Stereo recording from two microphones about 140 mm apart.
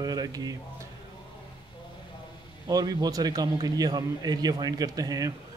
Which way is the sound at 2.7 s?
30° right (ahead or behind).